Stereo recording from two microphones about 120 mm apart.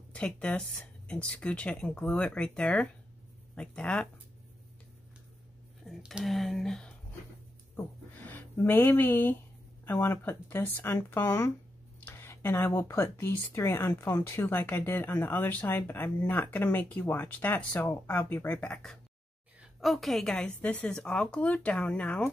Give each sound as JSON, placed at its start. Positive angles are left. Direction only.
{"t": 0.1, "sound": "speech", "side_deg": 10}
{"t": 5.9, "sound": "speech", "side_deg": 0}
{"t": 7.7, "sound": "speech", "side_deg": 15}